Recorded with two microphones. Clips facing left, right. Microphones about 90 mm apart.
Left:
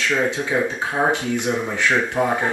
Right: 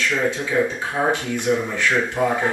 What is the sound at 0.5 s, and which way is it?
Speech, 15° left (ahead or behind).